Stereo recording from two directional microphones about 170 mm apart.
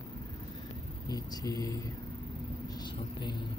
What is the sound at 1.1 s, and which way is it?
Speech, 20° left (ahead or behind).